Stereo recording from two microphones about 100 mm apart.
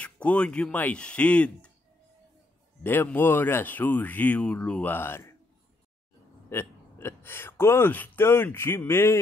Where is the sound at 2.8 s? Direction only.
20° left (ahead or behind).